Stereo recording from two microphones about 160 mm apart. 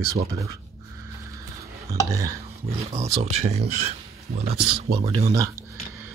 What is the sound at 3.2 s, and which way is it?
Speech, 40° right (ahead or behind).